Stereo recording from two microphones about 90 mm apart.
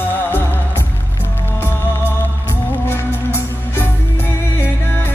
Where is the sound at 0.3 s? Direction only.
25° left (ahead or behind).